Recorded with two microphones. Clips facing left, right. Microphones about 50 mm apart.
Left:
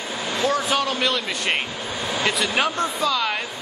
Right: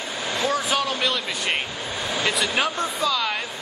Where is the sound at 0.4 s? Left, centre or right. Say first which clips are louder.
Left 2 dB; centre.